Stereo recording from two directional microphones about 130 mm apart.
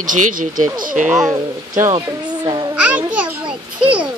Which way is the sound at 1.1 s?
20° right (ahead or behind).